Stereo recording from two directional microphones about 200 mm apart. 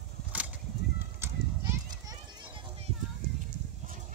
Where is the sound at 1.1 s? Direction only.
10° right (ahead or behind).